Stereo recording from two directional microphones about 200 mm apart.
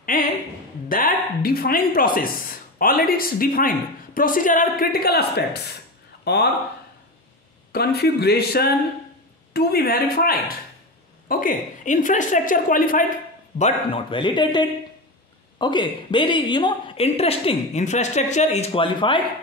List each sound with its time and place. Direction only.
0.1 s a sound: 45° left (ahead or behind)
0.8 s speech: 45° left (ahead or behind)
7.7 s a woman's voice: 55° left (ahead or behind)
13.6 s a woman's voice: 30° left (ahead or behind)